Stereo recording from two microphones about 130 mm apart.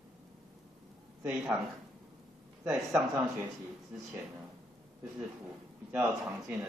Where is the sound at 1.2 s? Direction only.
5° right (ahead or behind).